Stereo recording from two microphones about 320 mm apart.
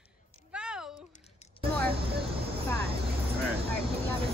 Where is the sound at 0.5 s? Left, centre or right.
Centre.